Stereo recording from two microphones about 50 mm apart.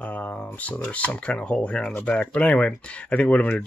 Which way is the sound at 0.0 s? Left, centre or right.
Left.